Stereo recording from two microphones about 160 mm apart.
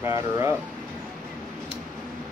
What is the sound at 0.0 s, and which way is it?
Speech, 15° right (ahead or behind).